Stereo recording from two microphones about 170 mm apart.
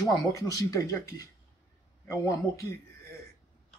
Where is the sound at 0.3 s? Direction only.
20° left (ahead or behind).